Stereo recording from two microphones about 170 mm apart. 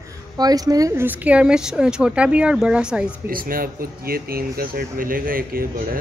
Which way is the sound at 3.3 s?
55° right (ahead or behind).